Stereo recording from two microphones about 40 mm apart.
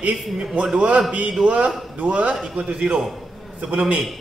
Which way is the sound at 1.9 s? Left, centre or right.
Right.